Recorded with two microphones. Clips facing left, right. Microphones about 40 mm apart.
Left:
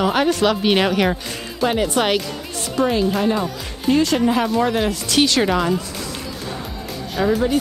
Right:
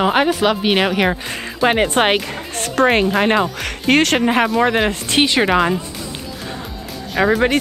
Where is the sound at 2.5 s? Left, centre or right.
Right.